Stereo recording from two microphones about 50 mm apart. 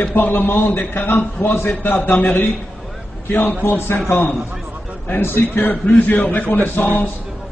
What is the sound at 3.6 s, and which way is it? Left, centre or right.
Speech, left.